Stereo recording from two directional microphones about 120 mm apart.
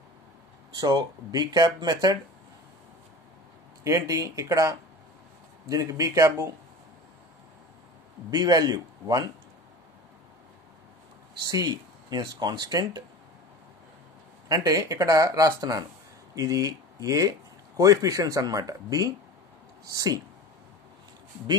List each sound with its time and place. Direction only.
0.7 s speech: 35° right (ahead or behind)
3.8 s speech: 25° right (ahead or behind)
8.3 s speech: 35° right (ahead or behind)
11.4 s speech: 35° right (ahead or behind)
14.5 s speech: 30° right (ahead or behind)